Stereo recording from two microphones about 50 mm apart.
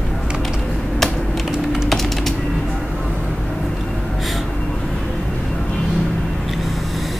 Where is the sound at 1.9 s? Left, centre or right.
Centre.